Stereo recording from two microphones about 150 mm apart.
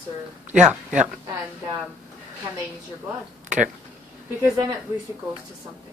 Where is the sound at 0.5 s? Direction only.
5° right (ahead or behind).